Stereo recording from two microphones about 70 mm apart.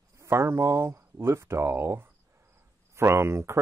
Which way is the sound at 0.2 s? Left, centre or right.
Right.